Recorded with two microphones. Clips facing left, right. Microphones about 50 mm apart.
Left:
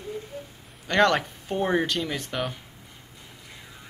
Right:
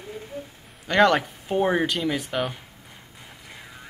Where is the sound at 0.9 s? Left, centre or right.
Centre.